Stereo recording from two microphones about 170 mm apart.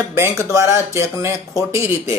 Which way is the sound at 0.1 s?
15° right (ahead or behind).